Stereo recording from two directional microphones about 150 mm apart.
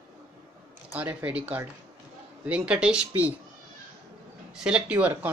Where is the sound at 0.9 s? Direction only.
10° right (ahead or behind).